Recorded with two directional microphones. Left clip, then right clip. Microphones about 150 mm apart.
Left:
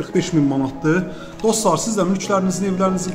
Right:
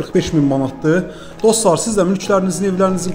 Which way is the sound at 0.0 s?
30° right (ahead or behind).